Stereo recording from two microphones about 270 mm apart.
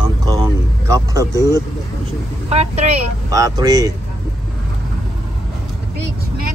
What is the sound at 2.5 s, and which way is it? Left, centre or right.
Speech, right.